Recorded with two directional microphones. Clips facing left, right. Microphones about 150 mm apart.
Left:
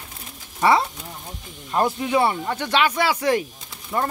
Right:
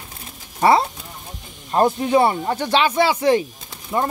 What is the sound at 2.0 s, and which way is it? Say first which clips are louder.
Speech: right 4 dB; 35° right (ahead or behind).